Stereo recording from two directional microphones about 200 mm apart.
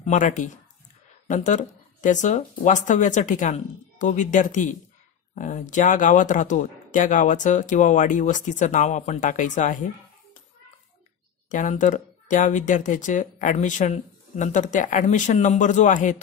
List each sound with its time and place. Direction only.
0.0 s speech: 40° left (ahead or behind)
11.4 s speech: 40° left (ahead or behind)